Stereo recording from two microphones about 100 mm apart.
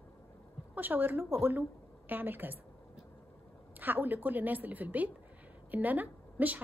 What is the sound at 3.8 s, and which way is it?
A woman's voice, 20° right (ahead or behind).